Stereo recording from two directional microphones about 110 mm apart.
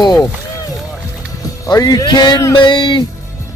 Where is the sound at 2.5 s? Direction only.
45° left (ahead or behind).